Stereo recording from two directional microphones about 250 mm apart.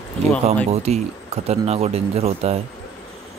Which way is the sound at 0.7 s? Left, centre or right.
Right.